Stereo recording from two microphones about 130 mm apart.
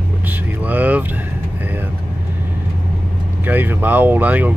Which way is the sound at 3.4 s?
15° right (ahead or behind).